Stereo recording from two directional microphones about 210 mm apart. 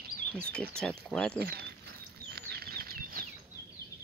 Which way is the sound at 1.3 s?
50° right (ahead or behind).